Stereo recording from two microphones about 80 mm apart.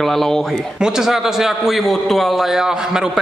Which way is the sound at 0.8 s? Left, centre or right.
Centre.